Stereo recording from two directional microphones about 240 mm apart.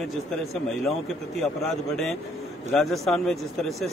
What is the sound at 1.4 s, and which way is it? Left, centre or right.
Speech, centre.